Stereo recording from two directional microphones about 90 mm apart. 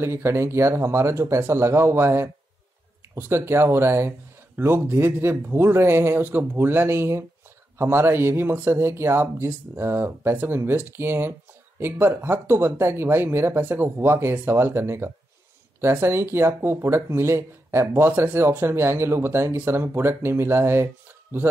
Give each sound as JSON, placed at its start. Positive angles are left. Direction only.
{"t": 0.0, "sound": "speech", "side_deg": -30}